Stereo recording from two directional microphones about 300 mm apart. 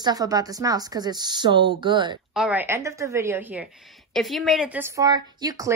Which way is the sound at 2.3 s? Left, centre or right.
Centre.